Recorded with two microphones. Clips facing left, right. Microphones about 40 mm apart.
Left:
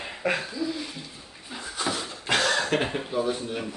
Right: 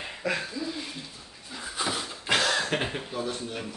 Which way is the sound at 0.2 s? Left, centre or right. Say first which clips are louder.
Left 3 dB; left.